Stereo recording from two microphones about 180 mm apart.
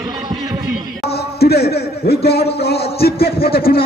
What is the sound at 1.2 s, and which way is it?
A man's voice, 60° left (ahead or behind).